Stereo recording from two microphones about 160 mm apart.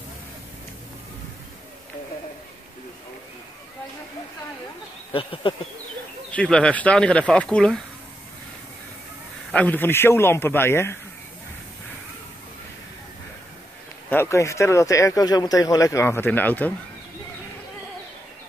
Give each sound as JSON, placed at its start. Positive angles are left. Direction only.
{"t": 5.1, "sound": "a sound", "side_deg": 35}
{"t": 6.3, "sound": "speech", "side_deg": 5}
{"t": 9.5, "sound": "speech", "side_deg": 10}
{"t": 14.0, "sound": "speech", "side_deg": 15}